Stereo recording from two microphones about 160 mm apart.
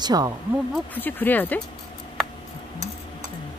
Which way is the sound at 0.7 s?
10° left (ahead or behind).